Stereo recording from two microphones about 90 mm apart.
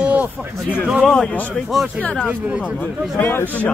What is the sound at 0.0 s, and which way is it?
Speech, 15° right (ahead or behind).